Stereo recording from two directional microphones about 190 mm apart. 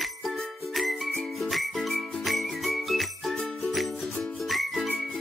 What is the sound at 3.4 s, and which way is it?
Music, centre (ahead or behind).